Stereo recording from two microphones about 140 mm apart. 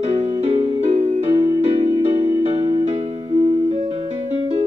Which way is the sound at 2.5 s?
45° right (ahead or behind).